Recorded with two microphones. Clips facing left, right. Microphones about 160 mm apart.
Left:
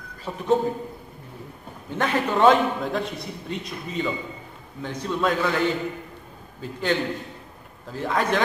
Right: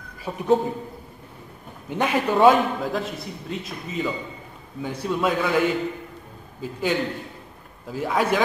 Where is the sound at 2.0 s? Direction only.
10° right (ahead or behind).